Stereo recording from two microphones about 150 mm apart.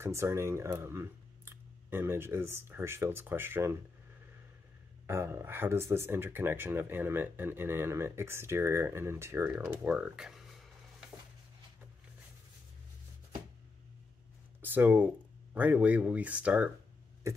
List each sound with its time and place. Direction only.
0.0 s speech: 20° right (ahead or behind)
5.0 s speech: 15° right (ahead or behind)
14.6 s speech: 15° right (ahead or behind)